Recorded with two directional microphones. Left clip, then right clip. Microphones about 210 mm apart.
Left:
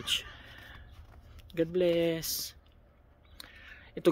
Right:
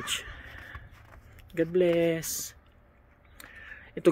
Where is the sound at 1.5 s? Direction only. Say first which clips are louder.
Right 3 dB; 5° right (ahead or behind).